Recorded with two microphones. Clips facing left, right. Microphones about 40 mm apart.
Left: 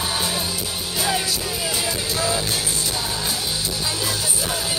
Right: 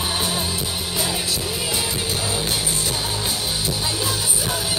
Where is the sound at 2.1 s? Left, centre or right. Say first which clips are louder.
Left 2 dB; right.